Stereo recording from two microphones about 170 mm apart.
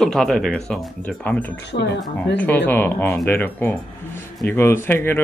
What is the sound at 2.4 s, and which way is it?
Speech, 10° left (ahead or behind).